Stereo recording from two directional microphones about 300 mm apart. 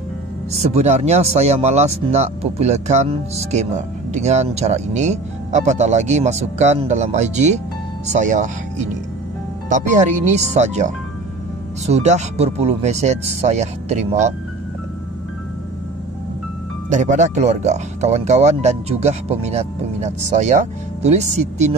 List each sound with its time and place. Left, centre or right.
0.5 s speech: right
16.9 s speech: right